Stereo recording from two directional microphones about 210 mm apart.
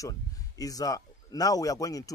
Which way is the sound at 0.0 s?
15° left (ahead or behind).